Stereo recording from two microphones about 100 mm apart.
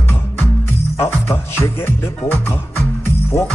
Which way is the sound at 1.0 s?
25° left (ahead or behind).